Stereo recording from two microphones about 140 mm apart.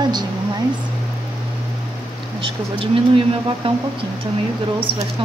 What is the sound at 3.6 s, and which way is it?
Speech, 40° right (ahead or behind).